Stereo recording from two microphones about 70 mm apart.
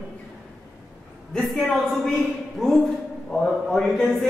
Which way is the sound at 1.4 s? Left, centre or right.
Centre.